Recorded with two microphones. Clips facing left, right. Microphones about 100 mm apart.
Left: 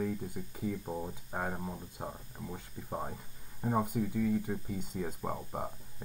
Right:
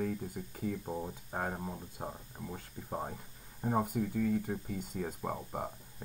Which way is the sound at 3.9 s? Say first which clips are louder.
Left 1 dB; 50° right (ahead or behind).